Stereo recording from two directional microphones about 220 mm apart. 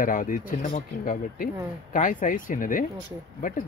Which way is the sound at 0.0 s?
40° left (ahead or behind).